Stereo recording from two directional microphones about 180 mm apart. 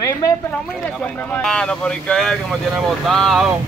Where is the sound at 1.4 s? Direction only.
5° left (ahead or behind).